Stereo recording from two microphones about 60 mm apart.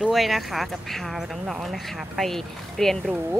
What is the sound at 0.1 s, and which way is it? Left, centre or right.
Speech, centre.